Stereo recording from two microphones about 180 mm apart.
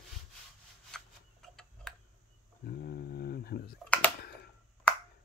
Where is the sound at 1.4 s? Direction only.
Centre (ahead or behind).